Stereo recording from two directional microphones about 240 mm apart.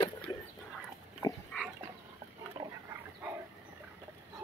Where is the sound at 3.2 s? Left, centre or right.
Centre.